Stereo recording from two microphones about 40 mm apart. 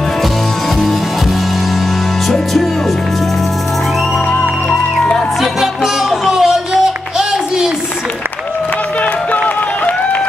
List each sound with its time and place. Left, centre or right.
2.2 s music: centre
5.4 s music: centre